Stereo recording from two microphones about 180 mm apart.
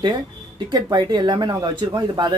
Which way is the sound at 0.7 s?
25° right (ahead or behind).